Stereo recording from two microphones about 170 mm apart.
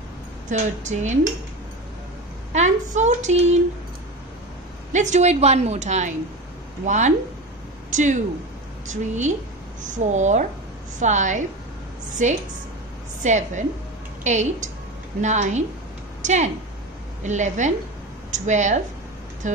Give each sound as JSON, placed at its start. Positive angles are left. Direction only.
{"t": 0.5, "sound": "a woman's voice", "side_deg": -45}
{"t": 2.5, "sound": "a woman's voice", "side_deg": -45}
{"t": 4.9, "sound": "a woman's voice", "side_deg": -45}
{"t": 16.2, "sound": "a sound", "side_deg": -45}
{"t": 17.2, "sound": "a woman's voice", "side_deg": -45}